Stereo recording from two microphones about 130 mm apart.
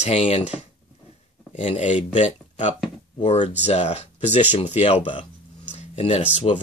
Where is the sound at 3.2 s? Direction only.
50° left (ahead or behind).